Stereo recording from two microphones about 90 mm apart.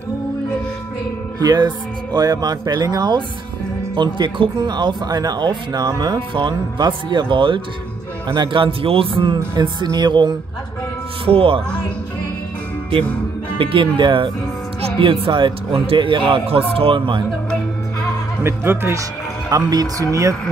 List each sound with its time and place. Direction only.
1.4 s speech: 50° right (ahead or behind)
11.2 s speech: 90° right
13.6 s speech: 80° right
14.8 s speech: 80° right
18.4 s speech: 25° right (ahead or behind)
19.5 s speech: 45° right (ahead or behind)